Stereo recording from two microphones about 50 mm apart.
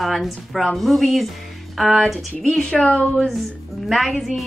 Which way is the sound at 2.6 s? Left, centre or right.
Left.